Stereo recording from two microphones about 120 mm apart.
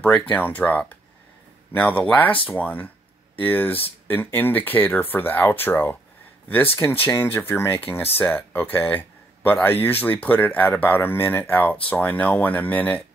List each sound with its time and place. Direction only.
0.0 s speech: 15° left (ahead or behind)